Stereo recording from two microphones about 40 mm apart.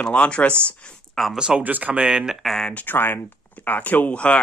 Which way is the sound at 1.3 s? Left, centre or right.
Right.